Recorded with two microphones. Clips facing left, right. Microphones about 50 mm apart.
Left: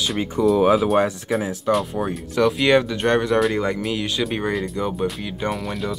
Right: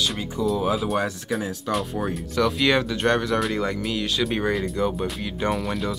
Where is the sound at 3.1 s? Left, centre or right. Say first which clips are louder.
Left 8 dB; centre.